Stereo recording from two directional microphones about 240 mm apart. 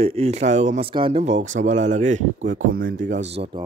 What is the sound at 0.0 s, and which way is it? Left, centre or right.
Speech, right.